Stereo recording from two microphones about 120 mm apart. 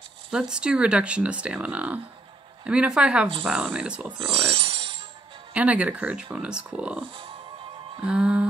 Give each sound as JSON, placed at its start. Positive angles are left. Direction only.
{"t": 0.3, "sound": "speech", "side_deg": -5}
{"t": 4.5, "sound": "a sound", "side_deg": -45}
{"t": 5.5, "sound": "speech", "side_deg": -10}